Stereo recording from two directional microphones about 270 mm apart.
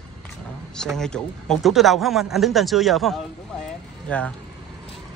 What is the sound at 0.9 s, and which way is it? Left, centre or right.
Speech, centre.